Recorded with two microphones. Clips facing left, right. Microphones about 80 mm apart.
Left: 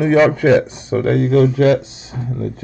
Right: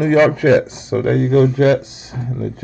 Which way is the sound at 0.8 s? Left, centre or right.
Centre.